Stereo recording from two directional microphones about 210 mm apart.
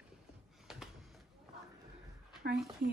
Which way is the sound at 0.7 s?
Centre (ahead or behind).